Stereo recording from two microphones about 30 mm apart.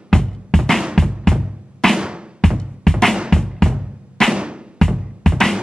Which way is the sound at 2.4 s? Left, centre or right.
Centre.